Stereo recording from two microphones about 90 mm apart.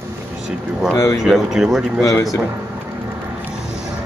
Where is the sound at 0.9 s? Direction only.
35° left (ahead or behind).